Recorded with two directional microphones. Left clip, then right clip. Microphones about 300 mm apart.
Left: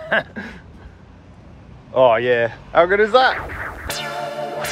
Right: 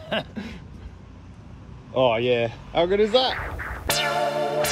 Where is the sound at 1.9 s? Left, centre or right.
Centre.